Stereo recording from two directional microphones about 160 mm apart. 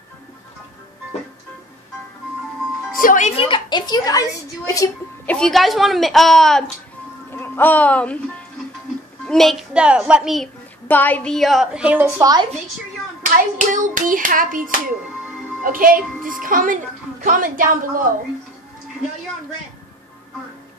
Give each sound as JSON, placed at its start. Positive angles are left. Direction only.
{"t": 3.0, "sound": "music", "side_deg": 55}
{"t": 3.3, "sound": "a woman's voice", "side_deg": 35}
{"t": 5.2, "sound": "a woman's voice", "side_deg": 5}
{"t": 7.2, "sound": "speech", "side_deg": 15}
{"t": 9.2, "sound": "a woman's voice", "side_deg": 5}
{"t": 10.9, "sound": "a woman's voice", "side_deg": 10}
{"t": 12.2, "sound": "a woman's voice", "side_deg": -25}
{"t": 13.2, "sound": "a child's voice", "side_deg": -55}